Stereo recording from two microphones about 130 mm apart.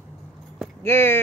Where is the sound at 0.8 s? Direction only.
20° left (ahead or behind).